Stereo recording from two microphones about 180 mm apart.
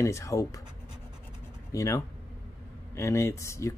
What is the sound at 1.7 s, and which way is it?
Speech, 20° left (ahead or behind).